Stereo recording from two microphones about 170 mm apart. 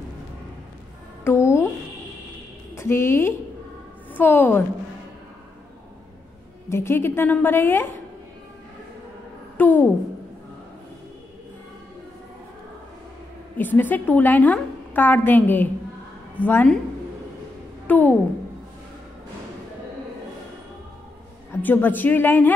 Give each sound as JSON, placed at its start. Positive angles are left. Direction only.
{"t": 1.2, "sound": "a sound", "side_deg": 15}
{"t": 2.7, "sound": "a woman's voice", "side_deg": 15}
{"t": 6.7, "sound": "a woman's voice", "side_deg": 15}
{"t": 9.6, "sound": "a woman's voice", "side_deg": 10}
{"t": 13.6, "sound": "a woman's voice", "side_deg": 10}
{"t": 17.8, "sound": "a child's voice", "side_deg": 10}
{"t": 21.5, "sound": "a woman's voice", "side_deg": 10}